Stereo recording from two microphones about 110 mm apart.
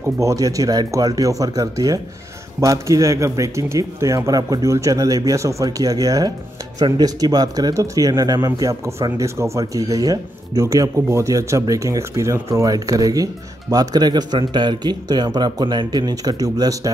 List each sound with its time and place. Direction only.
0.0 s speech: 30° right (ahead or behind)